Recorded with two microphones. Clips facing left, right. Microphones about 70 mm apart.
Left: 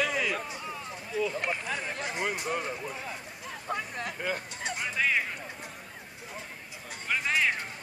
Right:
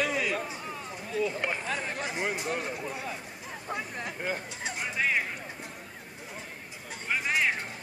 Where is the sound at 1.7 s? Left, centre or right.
Centre.